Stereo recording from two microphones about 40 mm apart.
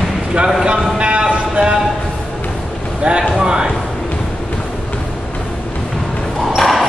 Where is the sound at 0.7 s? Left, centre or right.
Right.